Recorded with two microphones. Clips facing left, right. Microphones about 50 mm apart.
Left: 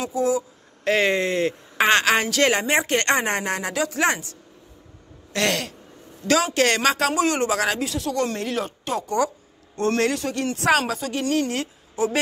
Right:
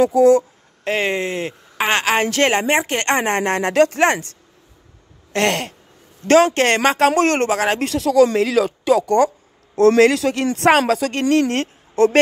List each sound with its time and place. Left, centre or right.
0.0 s speech: right
0.8 s speech: right
2.2 s speech: right
3.2 s speech: right
5.3 s speech: right
6.2 s speech: right
7.1 s speech: right
7.5 s speech: right
7.8 s speech: right
11.5 s a woman's voice: right